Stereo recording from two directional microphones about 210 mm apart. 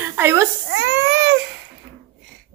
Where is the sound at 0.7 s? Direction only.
60° right (ahead or behind).